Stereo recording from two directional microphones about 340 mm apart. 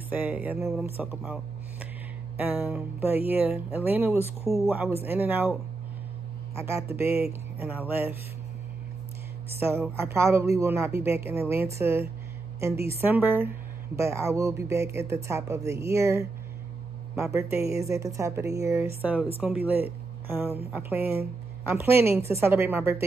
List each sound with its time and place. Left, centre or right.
0.1 s speech: centre
9.6 s a woman's voice: centre